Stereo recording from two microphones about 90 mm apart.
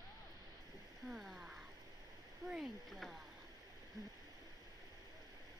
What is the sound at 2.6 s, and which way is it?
Speech, centre (ahead or behind).